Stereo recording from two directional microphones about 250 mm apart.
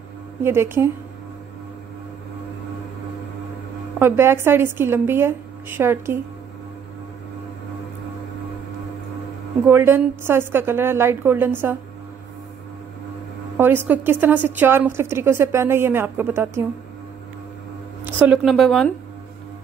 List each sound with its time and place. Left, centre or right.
0.4 s a woman's voice: centre
4.0 s a woman's voice: centre
9.7 s a woman's voice: centre
13.6 s a woman's voice: centre
18.0 s speech: centre